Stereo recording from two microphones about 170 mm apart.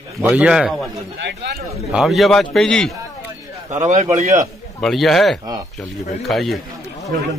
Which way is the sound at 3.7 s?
45° right (ahead or behind).